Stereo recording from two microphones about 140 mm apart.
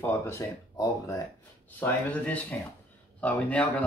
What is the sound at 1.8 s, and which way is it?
Speech, 10° left (ahead or behind).